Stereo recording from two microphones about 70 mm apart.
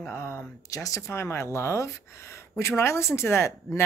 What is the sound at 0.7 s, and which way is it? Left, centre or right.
Speech, left.